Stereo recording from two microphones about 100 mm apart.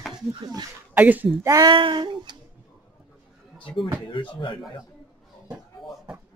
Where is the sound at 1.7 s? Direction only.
50° right (ahead or behind).